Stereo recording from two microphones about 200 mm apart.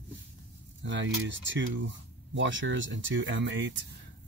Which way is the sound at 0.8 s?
65° right (ahead or behind).